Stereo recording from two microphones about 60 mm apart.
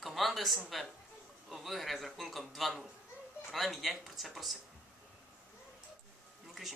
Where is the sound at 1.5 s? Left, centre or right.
Centre.